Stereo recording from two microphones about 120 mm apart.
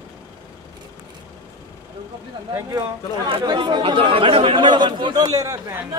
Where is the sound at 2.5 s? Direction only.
30° right (ahead or behind).